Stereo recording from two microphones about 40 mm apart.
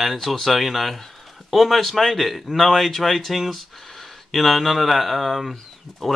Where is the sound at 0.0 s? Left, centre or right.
Centre.